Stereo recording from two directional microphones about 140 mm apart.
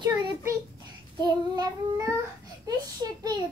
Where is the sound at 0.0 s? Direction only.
25° right (ahead or behind).